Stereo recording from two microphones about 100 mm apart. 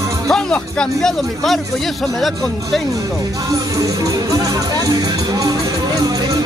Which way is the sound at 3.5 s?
35° right (ahead or behind).